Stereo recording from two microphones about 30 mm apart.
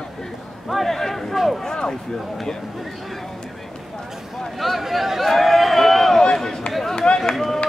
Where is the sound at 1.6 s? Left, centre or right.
Left.